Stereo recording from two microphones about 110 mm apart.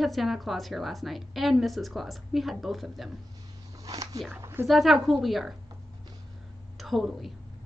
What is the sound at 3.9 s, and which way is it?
Speech, 30° right (ahead or behind).